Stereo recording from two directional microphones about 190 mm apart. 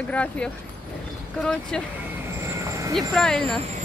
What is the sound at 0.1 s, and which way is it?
Speech, 5° left (ahead or behind).